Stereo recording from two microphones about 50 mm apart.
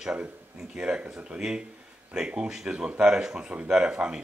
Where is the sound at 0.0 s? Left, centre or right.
Centre.